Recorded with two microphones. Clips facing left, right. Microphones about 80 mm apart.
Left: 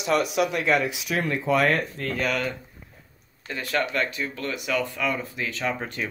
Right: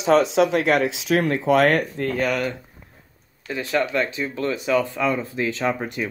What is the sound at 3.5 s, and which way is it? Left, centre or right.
Speech, centre.